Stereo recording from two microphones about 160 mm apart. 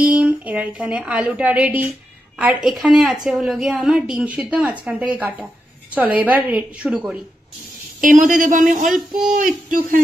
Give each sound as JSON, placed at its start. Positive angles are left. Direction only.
{"t": 0.0, "sound": "a woman's voice", "side_deg": -10}
{"t": 8.0, "sound": "speech", "side_deg": -55}